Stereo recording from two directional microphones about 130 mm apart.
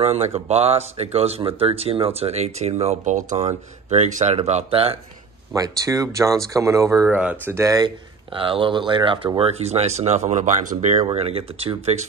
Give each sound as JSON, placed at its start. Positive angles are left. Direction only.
{"t": 0.0, "sound": "speech", "side_deg": -50}
{"t": 5.5, "sound": "speech", "side_deg": -25}
{"t": 8.4, "sound": "speech", "side_deg": -40}
{"t": 11.1, "sound": "speech", "side_deg": -50}